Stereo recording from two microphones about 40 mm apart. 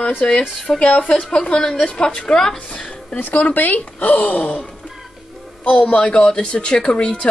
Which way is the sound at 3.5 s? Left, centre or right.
Left.